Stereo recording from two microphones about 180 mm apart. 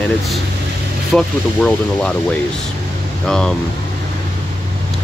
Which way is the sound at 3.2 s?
5° left (ahead or behind).